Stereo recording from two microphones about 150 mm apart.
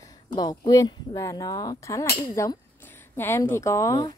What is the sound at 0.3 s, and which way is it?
Speech, 25° left (ahead or behind).